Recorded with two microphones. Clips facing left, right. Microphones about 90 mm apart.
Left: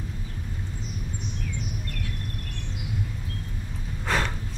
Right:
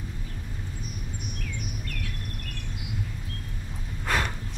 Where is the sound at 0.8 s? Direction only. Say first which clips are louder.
Left 3 dB; 20° left (ahead or behind).